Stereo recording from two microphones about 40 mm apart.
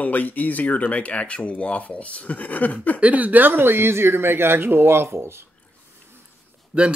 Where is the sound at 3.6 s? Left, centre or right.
Right.